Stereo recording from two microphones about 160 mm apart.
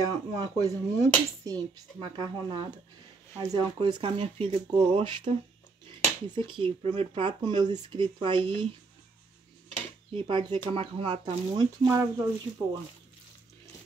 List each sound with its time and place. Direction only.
0.0 s speech: 25° right (ahead or behind)
10.1 s speech: 30° right (ahead or behind); by 12.7 s 15° right (ahead or behind)